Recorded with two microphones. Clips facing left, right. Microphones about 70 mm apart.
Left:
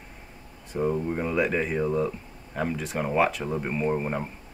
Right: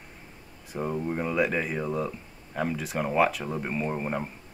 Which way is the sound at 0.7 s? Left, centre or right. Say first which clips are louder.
Left 3 dB; centre.